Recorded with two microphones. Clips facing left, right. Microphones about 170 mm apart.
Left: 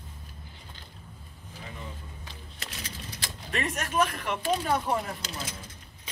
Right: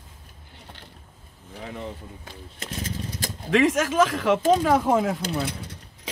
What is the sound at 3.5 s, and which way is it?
Speech, 90° right.